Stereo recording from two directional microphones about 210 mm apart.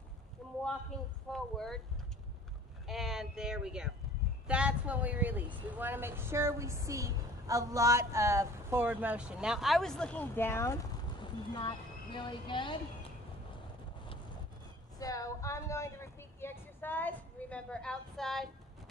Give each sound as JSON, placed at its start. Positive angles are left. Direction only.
{"t": 0.4, "sound": "a sound", "side_deg": 0}
{"t": 1.3, "sound": "speech", "side_deg": 0}
{"t": 2.9, "sound": "a woman's voice", "side_deg": 0}
{"t": 15.0, "sound": "vehicle", "side_deg": 15}